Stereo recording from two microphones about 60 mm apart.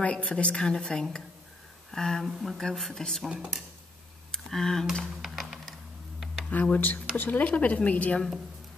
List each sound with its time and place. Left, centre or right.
0.0 s a woman's voice: centre
2.2 s a woman's voice: centre
3.3 s speech: centre
4.3 s tick: centre
5.2 s music: centre
6.5 s speech: left